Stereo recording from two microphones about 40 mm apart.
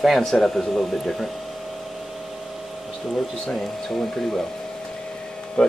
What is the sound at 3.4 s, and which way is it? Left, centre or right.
Speech, centre.